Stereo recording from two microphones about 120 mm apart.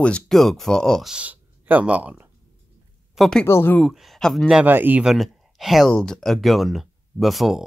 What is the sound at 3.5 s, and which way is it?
Speech, 20° left (ahead or behind).